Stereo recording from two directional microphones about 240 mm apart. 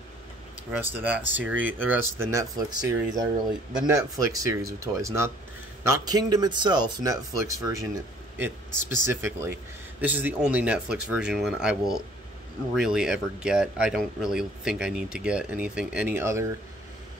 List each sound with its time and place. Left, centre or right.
0.7 s speech: centre